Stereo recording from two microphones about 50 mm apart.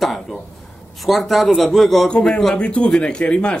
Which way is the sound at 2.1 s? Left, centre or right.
Centre.